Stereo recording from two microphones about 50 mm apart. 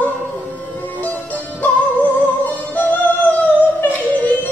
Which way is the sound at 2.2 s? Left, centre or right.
Left.